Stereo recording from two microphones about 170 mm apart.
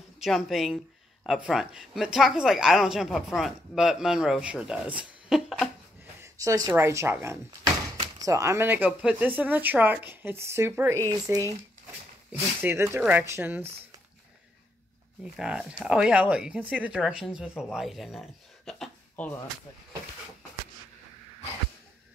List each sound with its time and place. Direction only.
0.2 s speech: centre (ahead or behind)
6.2 s speech: 20° right (ahead or behind)
15.3 s speech: 5° right (ahead or behind)